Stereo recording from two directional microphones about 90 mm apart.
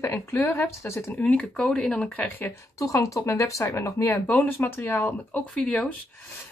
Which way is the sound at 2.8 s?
35° left (ahead or behind).